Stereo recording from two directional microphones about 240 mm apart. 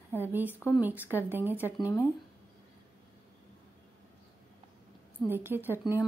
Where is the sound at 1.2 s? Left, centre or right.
Centre.